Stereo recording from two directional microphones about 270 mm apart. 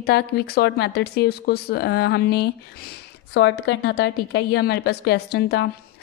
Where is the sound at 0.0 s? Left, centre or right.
Left.